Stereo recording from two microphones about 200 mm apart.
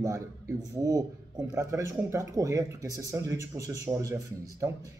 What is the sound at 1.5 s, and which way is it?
Speech, 15° right (ahead or behind).